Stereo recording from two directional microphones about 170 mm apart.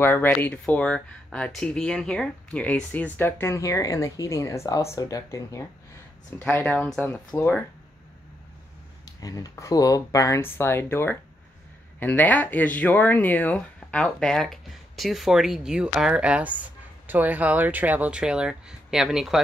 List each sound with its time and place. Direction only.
0.0 s speech: 15° left (ahead or behind)
6.4 s speech: 10° left (ahead or behind)
9.0 s speech: 20° left (ahead or behind); by 19.4 s centre (ahead or behind)